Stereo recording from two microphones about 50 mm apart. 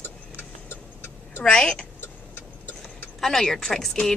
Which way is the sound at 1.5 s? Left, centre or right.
Centre.